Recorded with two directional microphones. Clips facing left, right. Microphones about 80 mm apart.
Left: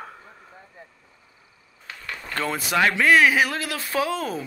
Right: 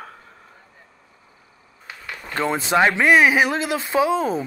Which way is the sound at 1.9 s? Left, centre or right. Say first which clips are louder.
Right 1 dB; centre.